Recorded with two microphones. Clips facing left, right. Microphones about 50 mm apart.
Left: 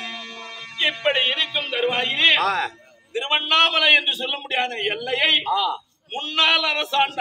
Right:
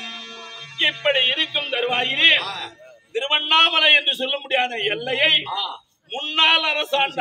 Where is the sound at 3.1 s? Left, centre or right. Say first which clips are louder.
Right 1 dB; centre.